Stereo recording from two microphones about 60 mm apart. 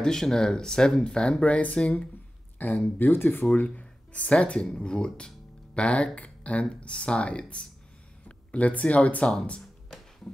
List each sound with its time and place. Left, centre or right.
0.0 s speech: centre; by 3.4 s left
3.6 s speech: left